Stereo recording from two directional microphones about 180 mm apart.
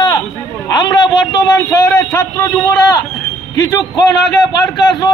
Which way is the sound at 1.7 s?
15° left (ahead or behind).